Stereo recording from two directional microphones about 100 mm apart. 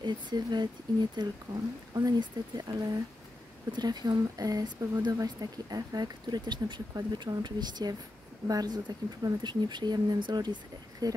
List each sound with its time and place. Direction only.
0.0 s speech: 45° right (ahead or behind)